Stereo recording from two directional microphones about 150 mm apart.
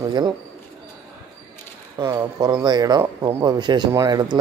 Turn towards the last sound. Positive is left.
turn(degrees=-25)  # may be behind; listen again after turning